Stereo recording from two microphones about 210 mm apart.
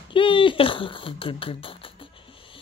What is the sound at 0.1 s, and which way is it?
Speech, 25° left (ahead or behind).